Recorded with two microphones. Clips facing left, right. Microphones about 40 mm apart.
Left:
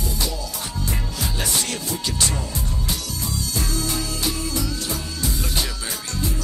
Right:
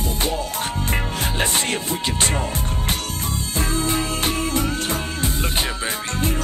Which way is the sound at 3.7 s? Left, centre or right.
Right.